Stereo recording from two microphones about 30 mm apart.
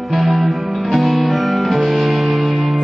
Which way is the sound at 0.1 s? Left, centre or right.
Centre.